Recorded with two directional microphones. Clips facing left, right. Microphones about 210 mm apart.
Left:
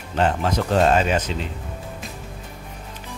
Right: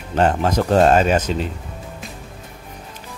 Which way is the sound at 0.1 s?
45° right (ahead or behind).